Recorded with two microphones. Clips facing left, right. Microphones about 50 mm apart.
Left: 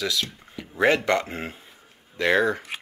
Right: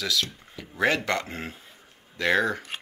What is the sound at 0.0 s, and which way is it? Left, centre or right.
Speech, centre.